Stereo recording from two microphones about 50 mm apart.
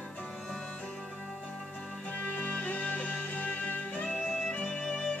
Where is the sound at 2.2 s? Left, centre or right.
Left.